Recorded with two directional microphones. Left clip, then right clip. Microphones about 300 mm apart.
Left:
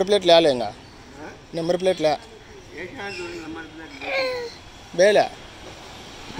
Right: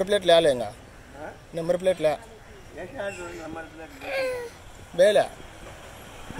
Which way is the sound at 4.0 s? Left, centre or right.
Centre.